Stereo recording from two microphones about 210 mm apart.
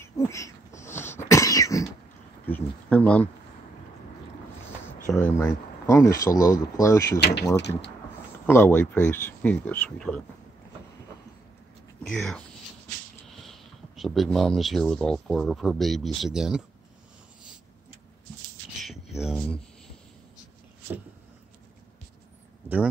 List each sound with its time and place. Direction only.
0.0 s a sound: 15° left (ahead or behind)
1.3 s cough: 15° left (ahead or behind)
2.4 s speech: 10° left (ahead or behind)
5.0 s speech: 10° left (ahead or behind)
7.2 s speech: 50° left (ahead or behind)
8.5 s speech: 10° left (ahead or behind)
12.0 s speech: 5° left (ahead or behind)
18.8 s a sound: centre (ahead or behind)